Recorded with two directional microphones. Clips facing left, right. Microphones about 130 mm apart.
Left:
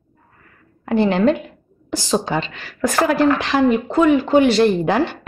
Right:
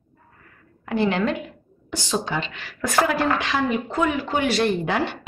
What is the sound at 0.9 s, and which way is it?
A woman's voice, 30° left (ahead or behind).